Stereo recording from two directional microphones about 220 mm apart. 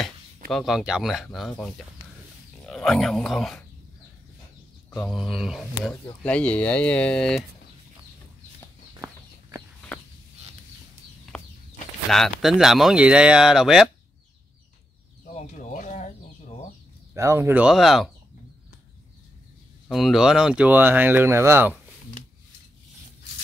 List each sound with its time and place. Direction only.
0.5 s speech: centre (ahead or behind)
2.6 s speech: centre (ahead or behind)
4.9 s speech: centre (ahead or behind)
11.3 s a sound: centre (ahead or behind)
12.1 s speech: centre (ahead or behind)
15.3 s a sound: 35° left (ahead or behind)
17.1 s speech: 15° right (ahead or behind)
19.9 s speech: centre (ahead or behind)